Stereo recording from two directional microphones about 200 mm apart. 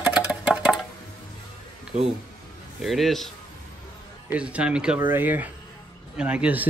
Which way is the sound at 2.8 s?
Centre (ahead or behind).